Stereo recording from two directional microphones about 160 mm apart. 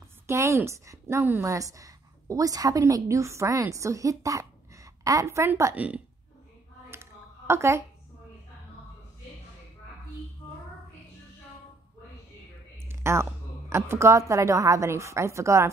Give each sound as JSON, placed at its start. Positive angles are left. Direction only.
{"t": 0.3, "sound": "a woman's voice", "side_deg": -20}
{"t": 6.9, "sound": "a sound", "side_deg": -15}
{"t": 12.8, "sound": "a woman's voice", "side_deg": -15}